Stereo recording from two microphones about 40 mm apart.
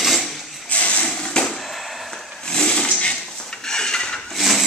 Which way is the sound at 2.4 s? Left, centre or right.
Left.